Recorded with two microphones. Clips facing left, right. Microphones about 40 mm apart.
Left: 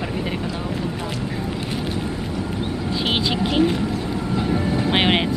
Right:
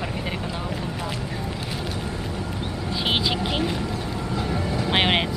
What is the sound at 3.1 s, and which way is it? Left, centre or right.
Speech, centre.